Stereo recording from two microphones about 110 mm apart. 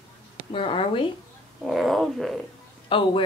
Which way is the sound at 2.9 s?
50° left (ahead or behind).